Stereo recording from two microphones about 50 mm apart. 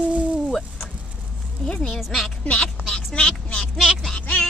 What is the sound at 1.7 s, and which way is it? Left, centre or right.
Speech, centre.